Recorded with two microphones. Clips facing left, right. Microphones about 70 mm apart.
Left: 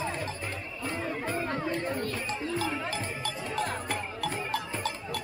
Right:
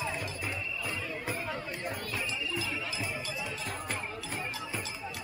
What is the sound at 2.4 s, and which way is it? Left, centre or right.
Music, left.